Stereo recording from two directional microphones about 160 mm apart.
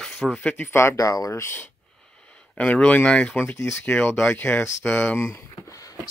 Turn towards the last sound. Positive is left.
turn(degrees=20)  # may be behind; listen again after turning